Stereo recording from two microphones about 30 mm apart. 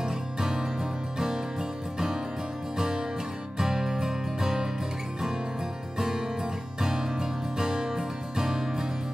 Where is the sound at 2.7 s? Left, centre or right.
Right.